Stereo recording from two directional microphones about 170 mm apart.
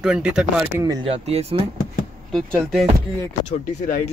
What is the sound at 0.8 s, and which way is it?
Speech, 25° right (ahead or behind).